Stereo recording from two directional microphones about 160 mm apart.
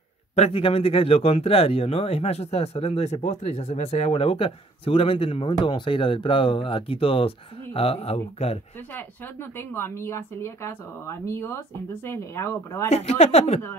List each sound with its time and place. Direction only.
0.4 s speech: 35° left (ahead or behind)
8.9 s a woman's voice: 15° left (ahead or behind)
12.9 s speech: 40° left (ahead or behind)